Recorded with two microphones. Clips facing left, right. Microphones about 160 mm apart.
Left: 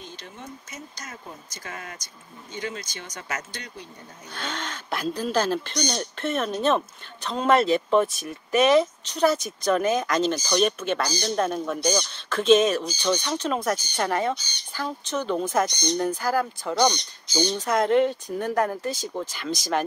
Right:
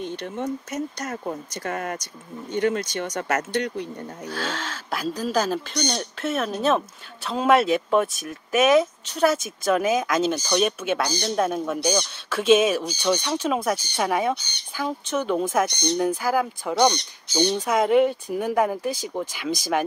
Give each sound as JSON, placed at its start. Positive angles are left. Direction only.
{"t": 0.0, "sound": "speech", "side_deg": -65}
{"t": 2.5, "sound": "speech", "side_deg": -65}
{"t": 4.3, "sound": "speech", "side_deg": -5}